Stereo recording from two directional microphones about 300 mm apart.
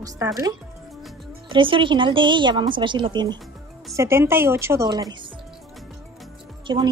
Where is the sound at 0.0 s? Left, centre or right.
Centre.